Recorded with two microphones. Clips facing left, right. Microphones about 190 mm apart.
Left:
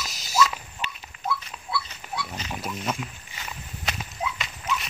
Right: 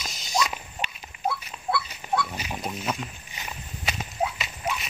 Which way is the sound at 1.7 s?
55° right (ahead or behind).